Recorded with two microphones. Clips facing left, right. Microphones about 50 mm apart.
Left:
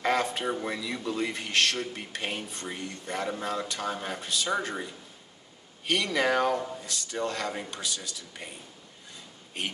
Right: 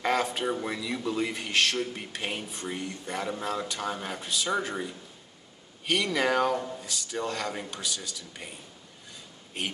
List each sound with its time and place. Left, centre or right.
0.0 s a man's voice: centre
6.1 s a man's voice: centre